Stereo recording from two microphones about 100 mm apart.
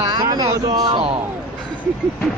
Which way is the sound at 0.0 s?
45° right (ahead or behind).